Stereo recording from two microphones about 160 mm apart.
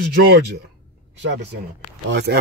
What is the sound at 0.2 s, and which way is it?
Speech, 75° right (ahead or behind).